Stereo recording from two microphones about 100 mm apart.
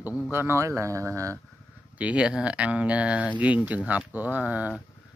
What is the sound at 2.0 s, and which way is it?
Speech, 10° right (ahead or behind).